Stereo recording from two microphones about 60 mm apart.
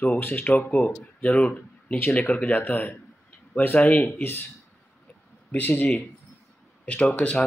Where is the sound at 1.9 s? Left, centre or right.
Left.